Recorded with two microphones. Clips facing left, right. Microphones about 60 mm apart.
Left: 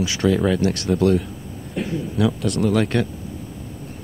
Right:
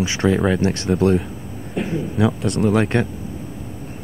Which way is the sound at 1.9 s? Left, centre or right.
Right.